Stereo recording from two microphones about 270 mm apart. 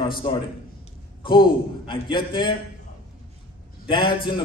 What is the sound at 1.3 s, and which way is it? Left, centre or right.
A man's voice, centre.